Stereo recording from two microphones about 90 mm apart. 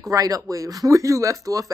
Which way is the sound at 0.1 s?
40° right (ahead or behind).